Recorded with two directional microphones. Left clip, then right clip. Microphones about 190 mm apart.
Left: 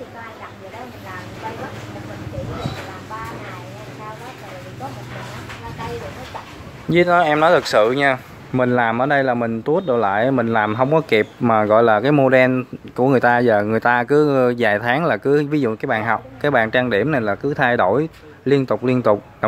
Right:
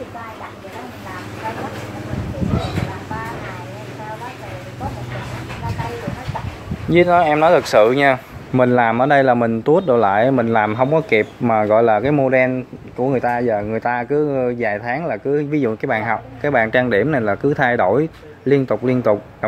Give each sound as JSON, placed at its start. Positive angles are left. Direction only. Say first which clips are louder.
{"t": 6.9, "sound": "speech", "louder": "right 1 dB", "side_deg": 5}